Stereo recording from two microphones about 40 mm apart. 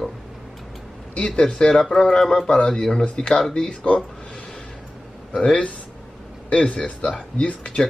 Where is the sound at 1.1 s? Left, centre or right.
Left.